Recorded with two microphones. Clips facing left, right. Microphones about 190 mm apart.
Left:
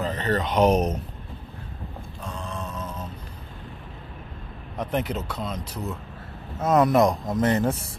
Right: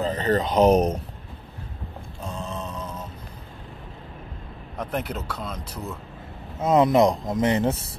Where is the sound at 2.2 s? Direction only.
25° right (ahead or behind).